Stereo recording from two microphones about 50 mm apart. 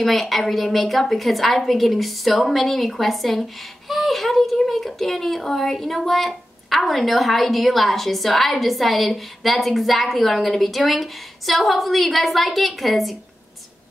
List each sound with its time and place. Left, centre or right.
0.0 s a child's voice: centre